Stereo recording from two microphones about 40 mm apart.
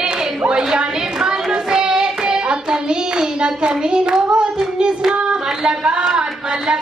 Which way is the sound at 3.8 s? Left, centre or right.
Right.